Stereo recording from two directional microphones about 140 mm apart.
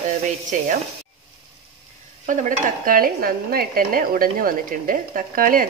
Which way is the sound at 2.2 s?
65° right (ahead or behind).